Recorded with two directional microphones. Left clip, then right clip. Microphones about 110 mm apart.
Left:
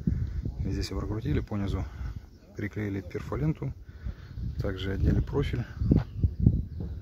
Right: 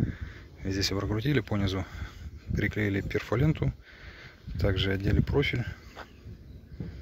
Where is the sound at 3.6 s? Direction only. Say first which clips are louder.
Right 5 dB; 15° right (ahead or behind).